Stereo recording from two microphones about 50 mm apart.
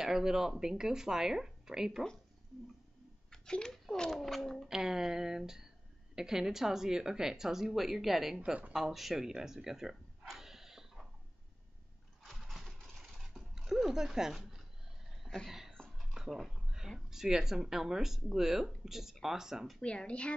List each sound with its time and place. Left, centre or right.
0.0 s a woman's voice: centre
3.3 s a child's voice: centre
4.6 s a woman's voice: centre
8.7 s a sound: centre
12.2 s a sound: centre
15.2 s a sound: centre
16.0 s dishes: centre
17.1 s a woman's voice: centre
19.8 s a woman's voice: left